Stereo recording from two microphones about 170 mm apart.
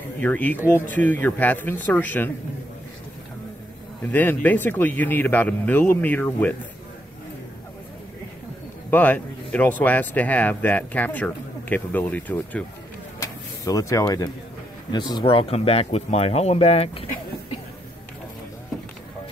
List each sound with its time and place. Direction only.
0.2 s speech: 10° left (ahead or behind)
4.1 s speech: 10° left (ahead or behind)
8.9 s speech: 10° left (ahead or behind)
13.2 s a sound: 20° left (ahead or behind)
14.9 s speech: 25° left (ahead or behind)